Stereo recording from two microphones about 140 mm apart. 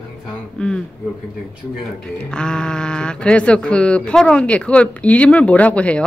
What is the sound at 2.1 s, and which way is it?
Speech, 5° left (ahead or behind).